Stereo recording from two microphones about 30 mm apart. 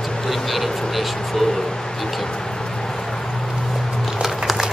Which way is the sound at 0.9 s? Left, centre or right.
Centre.